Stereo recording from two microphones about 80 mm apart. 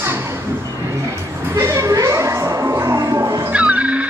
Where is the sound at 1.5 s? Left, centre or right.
Right.